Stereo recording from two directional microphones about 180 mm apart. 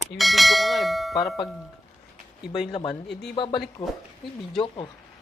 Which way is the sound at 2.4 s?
Centre (ahead or behind).